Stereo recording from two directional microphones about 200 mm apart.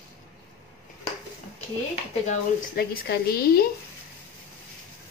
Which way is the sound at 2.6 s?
50° left (ahead or behind).